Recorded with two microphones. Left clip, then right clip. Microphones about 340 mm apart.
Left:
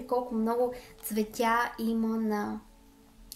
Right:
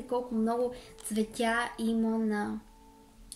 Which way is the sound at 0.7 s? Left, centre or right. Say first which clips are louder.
Left 1 dB; centre.